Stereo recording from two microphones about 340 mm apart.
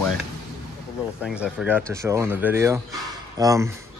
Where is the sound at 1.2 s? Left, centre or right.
Centre.